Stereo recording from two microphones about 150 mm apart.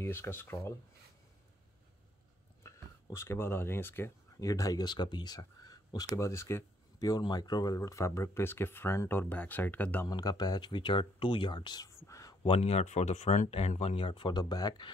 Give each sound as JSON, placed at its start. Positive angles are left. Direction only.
{"t": 0.0, "sound": "speech", "side_deg": 15}
{"t": 2.6, "sound": "speech", "side_deg": 15}
{"t": 10.0, "sound": "speech", "side_deg": 25}
{"t": 12.4, "sound": "speech", "side_deg": 45}